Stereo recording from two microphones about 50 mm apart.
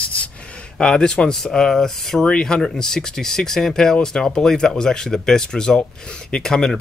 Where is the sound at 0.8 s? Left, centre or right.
Centre.